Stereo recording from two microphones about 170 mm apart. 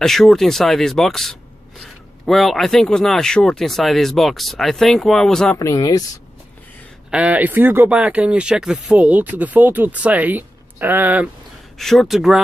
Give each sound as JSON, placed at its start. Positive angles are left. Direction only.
{"t": 0.0, "sound": "speech", "side_deg": 0}
{"t": 5.6, "sound": "speech", "side_deg": 20}
{"t": 7.1, "sound": "speech", "side_deg": -5}
{"t": 11.8, "sound": "speech", "side_deg": 0}